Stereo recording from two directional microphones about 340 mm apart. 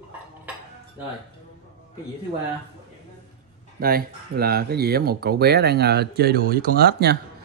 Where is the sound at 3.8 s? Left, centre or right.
Right.